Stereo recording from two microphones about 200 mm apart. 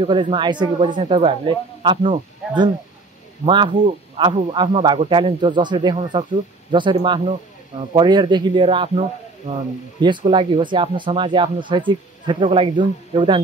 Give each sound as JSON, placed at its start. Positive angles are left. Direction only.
{"t": 0.0, "sound": "speech", "side_deg": -25}